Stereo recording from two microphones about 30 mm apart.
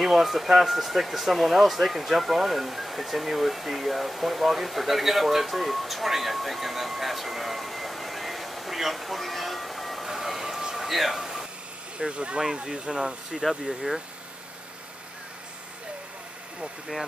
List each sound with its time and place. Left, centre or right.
0.0 s speech: centre
10.2 s a sound: centre
10.9 s speech: centre
11.1 s a sound: centre
12.1 s speech: right
12.7 s speech: right
13.7 s speech: centre